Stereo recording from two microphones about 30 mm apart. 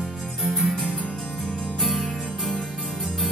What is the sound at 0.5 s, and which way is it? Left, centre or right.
Music, centre.